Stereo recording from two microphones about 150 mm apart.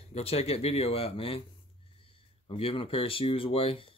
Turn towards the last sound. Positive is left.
turn(degrees=35)  # may be behind; listen again after turning